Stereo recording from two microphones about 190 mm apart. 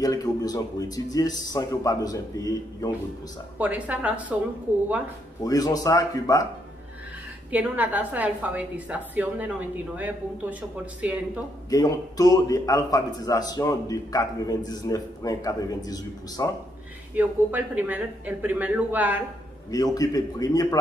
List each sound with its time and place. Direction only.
0.0 s a man's voice: 20° left (ahead or behind)
3.5 s a woman's voice: 5° right (ahead or behind)
5.4 s a man's voice: 20° left (ahead or behind)
7.5 s a woman's voice: 10° right (ahead or behind)
11.7 s a man's voice: 20° left (ahead or behind)
17.1 s a woman's voice: 10° right (ahead or behind)
19.7 s a man's voice: 20° left (ahead or behind)